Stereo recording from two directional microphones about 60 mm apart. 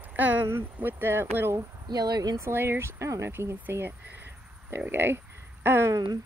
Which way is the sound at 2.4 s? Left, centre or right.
Right.